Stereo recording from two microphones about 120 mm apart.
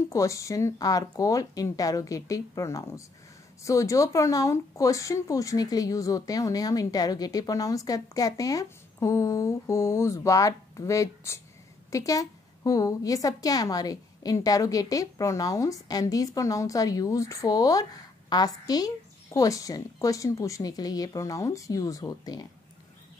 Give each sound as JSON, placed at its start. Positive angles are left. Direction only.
{"t": 0.1, "sound": "a woman's voice", "side_deg": 25}